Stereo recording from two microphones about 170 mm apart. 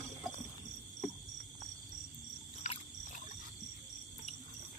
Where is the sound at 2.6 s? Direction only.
45° left (ahead or behind).